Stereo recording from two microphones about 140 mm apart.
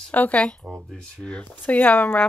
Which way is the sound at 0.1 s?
10° left (ahead or behind).